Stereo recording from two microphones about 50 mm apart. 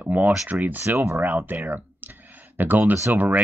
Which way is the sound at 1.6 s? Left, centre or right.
Right.